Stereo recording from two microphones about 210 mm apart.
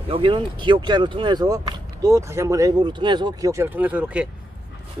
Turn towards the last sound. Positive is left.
turn(degrees=-5)  # may be behind; listen again after turning